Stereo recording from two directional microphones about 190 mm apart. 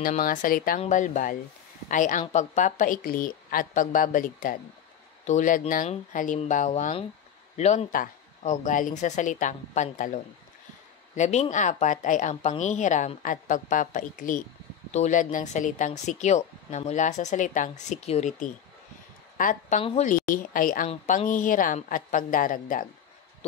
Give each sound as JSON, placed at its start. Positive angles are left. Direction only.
{"t": 0.2, "sound": "speech", "side_deg": 45}
{"t": 19.8, "sound": "speech", "side_deg": 30}
{"t": 20.1, "sound": "speech", "side_deg": 45}